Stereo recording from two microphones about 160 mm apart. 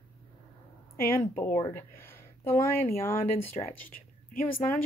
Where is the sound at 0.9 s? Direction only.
65° left (ahead or behind).